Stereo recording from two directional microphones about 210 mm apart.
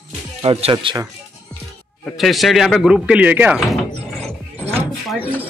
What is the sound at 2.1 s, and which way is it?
Speech, centre (ahead or behind).